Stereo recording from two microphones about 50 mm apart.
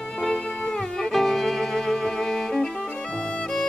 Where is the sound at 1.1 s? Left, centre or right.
Centre.